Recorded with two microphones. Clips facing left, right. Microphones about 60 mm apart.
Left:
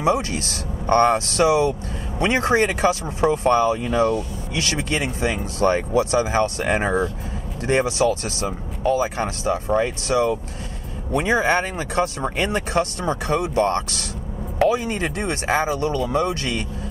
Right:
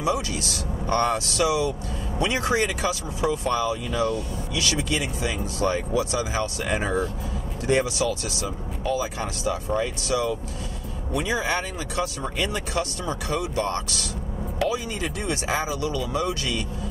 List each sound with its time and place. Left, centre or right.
0.0 s speech: left